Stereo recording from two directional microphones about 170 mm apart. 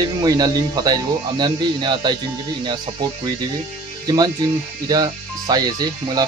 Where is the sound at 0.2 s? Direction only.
25° right (ahead or behind).